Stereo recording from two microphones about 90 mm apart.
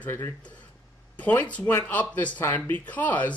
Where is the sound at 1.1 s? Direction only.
15° left (ahead or behind).